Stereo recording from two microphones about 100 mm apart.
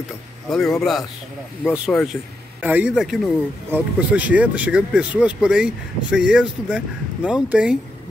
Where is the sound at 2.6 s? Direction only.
15° right (ahead or behind).